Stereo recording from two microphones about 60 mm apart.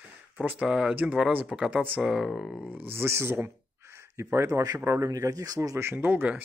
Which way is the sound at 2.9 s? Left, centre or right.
Right.